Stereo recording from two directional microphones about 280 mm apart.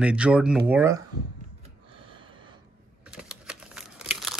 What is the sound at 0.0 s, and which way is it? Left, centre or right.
Speech, centre.